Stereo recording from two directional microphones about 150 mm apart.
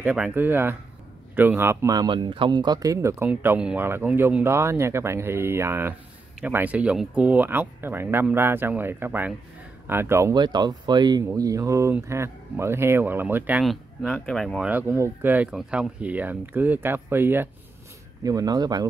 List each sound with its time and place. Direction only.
0.0 s speech: 10° right (ahead or behind)
10.3 s speech: 30° right (ahead or behind); by 13.7 s 10° right (ahead or behind)
13.7 s speech: 5° left (ahead or behind)
14.7 s speech: 15° right (ahead or behind)
18.2 s speech: 25° right (ahead or behind)